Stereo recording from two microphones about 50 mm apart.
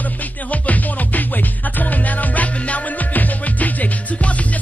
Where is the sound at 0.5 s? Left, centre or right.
Left.